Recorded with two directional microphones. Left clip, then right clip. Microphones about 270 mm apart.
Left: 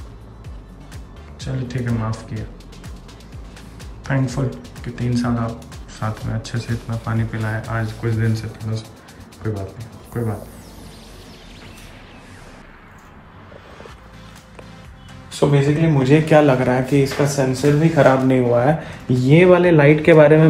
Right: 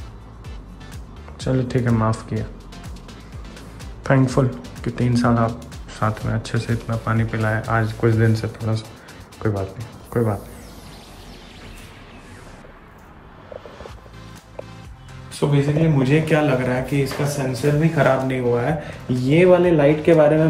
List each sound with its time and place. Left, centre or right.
1.4 s speech: centre
4.0 s speech: centre
15.4 s speech: centre
19.2 s speech: centre